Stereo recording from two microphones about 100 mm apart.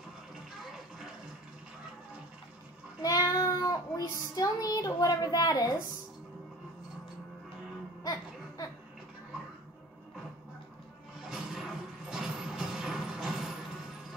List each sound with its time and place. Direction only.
3.0 s child singing: 35° left (ahead or behind)
8.0 s laughter: 40° left (ahead or behind)
11.2 s a sound: 5° right (ahead or behind)